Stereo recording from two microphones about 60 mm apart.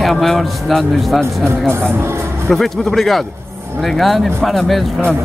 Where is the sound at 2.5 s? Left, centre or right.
Centre.